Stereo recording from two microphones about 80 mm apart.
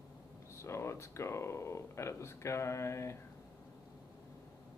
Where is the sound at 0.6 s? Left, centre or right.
Left.